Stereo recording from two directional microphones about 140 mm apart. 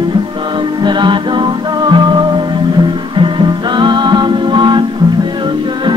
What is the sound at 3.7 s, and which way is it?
Music, 35° right (ahead or behind).